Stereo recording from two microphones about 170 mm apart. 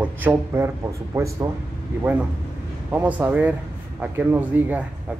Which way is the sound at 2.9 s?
10° right (ahead or behind).